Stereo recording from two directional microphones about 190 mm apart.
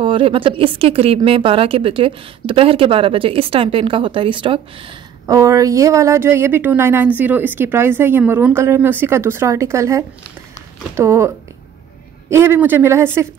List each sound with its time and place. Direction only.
0.0 s speech: 25° right (ahead or behind)